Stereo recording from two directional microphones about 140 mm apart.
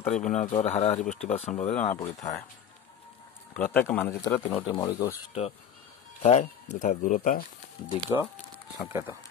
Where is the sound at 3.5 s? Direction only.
10° left (ahead or behind).